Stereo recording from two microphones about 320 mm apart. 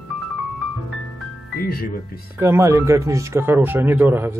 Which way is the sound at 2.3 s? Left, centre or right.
Centre.